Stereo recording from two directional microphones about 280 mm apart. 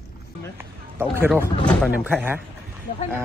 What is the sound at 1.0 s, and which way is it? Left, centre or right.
Speech, centre.